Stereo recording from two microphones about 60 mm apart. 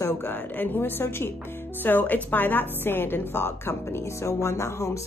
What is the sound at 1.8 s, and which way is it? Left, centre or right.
A woman's voice, left.